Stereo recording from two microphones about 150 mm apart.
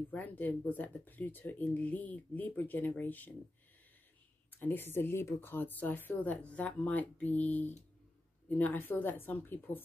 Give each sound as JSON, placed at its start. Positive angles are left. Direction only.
{"t": 0.1, "sound": "speech", "side_deg": 10}
{"t": 4.5, "sound": "speech", "side_deg": 15}